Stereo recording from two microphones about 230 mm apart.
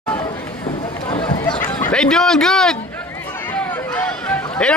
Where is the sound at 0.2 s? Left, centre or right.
Centre.